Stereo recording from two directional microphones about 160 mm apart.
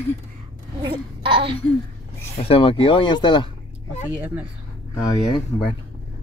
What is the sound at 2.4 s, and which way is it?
Speech, 35° left (ahead or behind).